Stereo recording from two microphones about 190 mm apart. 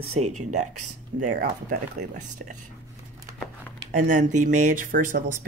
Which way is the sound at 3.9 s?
40° right (ahead or behind).